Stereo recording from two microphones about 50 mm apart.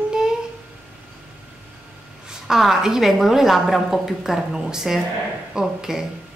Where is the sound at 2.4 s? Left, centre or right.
Centre.